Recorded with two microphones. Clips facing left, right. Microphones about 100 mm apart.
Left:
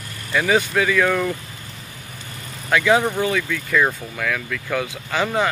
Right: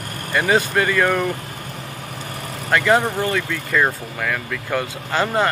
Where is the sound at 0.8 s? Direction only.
Centre (ahead or behind).